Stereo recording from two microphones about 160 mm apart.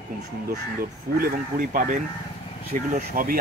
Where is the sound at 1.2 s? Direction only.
60° right (ahead or behind).